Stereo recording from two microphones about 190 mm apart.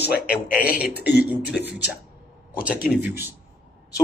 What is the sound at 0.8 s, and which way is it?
Speech, 10° right (ahead or behind).